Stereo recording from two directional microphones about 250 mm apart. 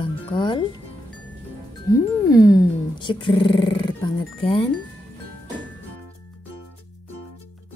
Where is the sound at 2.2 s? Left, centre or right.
Centre.